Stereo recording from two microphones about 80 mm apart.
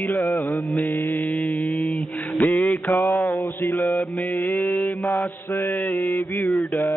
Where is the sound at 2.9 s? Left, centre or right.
Left.